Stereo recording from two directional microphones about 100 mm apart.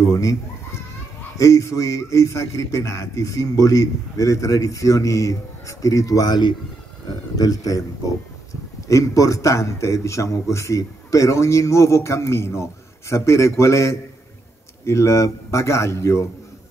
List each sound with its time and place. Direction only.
0.0 s a man's voice: 30° left (ahead or behind)
8.8 s a man's voice: 30° left (ahead or behind)